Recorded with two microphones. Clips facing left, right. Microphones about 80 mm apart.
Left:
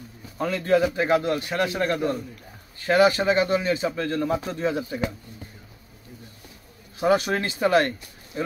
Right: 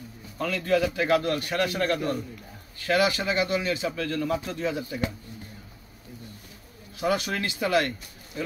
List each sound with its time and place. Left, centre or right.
0.4 s a man's voice: left
2.8 s a man's voice: left
7.0 s a man's voice: left